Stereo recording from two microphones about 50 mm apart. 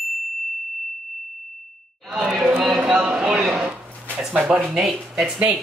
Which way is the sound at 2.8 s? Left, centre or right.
Centre.